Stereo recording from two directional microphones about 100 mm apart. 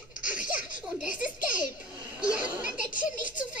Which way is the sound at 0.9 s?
10° right (ahead or behind).